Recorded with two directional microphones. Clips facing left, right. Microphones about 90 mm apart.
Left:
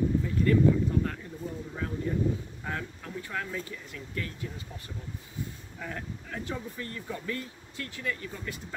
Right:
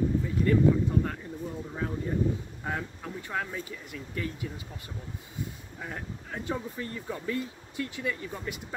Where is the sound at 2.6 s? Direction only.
20° right (ahead or behind).